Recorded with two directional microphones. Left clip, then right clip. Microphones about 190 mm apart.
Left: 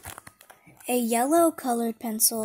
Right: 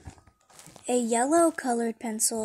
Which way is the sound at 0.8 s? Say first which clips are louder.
Left 1 dB; 25° left (ahead or behind).